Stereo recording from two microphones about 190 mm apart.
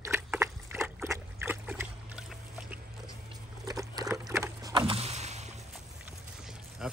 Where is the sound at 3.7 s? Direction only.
20° right (ahead or behind).